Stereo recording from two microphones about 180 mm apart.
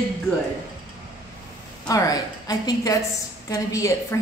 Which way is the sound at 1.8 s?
20° left (ahead or behind).